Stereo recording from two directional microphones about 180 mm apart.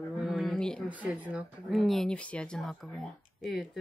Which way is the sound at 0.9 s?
5° right (ahead or behind).